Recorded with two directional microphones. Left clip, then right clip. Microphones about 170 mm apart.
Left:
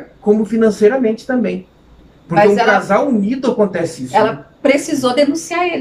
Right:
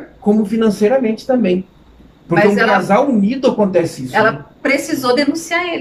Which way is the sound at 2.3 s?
15° left (ahead or behind).